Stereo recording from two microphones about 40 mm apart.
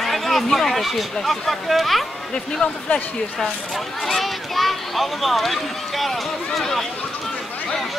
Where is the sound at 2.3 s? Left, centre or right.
Left.